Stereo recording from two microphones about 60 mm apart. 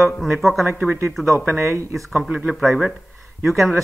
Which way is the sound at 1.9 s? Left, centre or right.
Centre.